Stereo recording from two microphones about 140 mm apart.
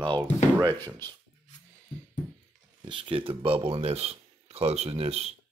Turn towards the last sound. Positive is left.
turn(degrees=-45)  # may be behind; listen again after turning